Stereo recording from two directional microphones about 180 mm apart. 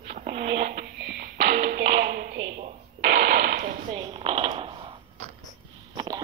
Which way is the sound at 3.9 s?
35° right (ahead or behind).